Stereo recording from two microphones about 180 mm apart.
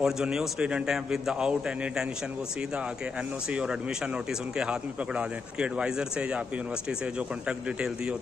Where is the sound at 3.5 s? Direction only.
5° right (ahead or behind).